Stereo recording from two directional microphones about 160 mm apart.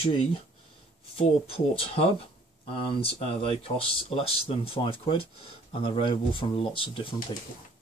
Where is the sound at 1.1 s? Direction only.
35° left (ahead or behind).